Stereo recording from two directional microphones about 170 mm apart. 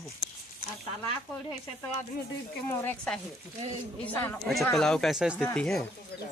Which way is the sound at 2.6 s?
10° left (ahead or behind).